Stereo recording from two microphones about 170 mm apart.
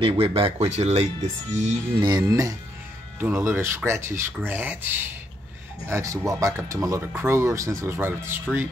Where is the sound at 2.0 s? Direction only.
25° right (ahead or behind).